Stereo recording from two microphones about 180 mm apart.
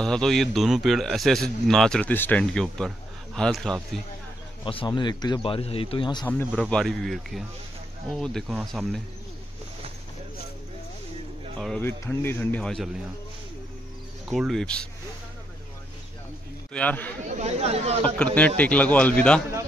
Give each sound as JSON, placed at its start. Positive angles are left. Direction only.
{"t": 0.0, "sound": "a man's voice", "side_deg": 5}
{"t": 4.6, "sound": "a man's voice", "side_deg": 30}
{"t": 6.2, "sound": "a man's voice", "side_deg": 10}
{"t": 11.8, "sound": "speech", "side_deg": 15}
{"t": 14.2, "sound": "a man's voice", "side_deg": 0}
{"t": 16.7, "sound": "speech", "side_deg": 10}
{"t": 17.3, "sound": "speech", "side_deg": -35}
{"t": 18.0, "sound": "speech", "side_deg": 5}